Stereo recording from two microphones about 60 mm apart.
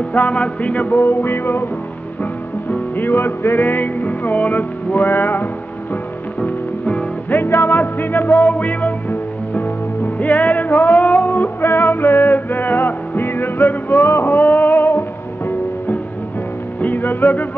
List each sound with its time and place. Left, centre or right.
0.1 s music: left
0.9 s music: left
2.7 s music: left